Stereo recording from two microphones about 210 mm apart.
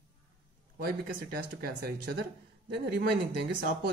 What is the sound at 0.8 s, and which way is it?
Speech, 50° right (ahead or behind).